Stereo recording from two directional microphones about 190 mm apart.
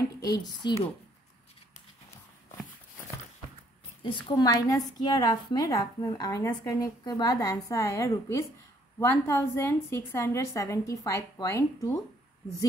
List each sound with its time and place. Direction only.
0.4 s a woman's voice: 20° left (ahead or behind)
4.0 s a woman's voice: 25° left (ahead or behind)